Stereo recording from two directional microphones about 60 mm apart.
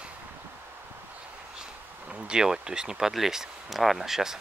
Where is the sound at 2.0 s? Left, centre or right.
Centre.